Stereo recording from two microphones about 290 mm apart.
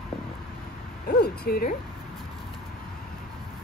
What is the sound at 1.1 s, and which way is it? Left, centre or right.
Speech, left.